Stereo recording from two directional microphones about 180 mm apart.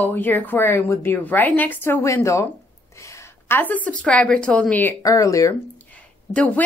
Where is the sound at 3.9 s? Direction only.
5° left (ahead or behind).